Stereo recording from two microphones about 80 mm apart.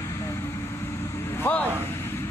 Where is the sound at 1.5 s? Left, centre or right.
Left.